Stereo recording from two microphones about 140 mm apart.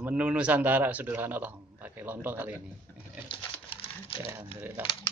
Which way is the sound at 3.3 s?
40° left (ahead or behind).